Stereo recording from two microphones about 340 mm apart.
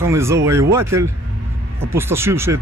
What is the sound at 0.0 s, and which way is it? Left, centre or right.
Speech, centre.